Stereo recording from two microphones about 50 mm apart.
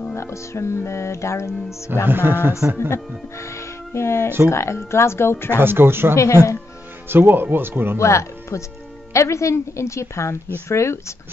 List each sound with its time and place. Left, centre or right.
0.1 s music: left
2.0 s speech: right
2.9 s speech: left
5.6 s speech: right
6.1 s speech: left
7.1 s speech: right
8.0 s music: left
9.1 s a woman's voice: left
10.7 s music: left